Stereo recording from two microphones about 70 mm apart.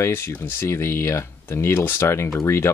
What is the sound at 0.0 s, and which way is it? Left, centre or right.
Speech, left.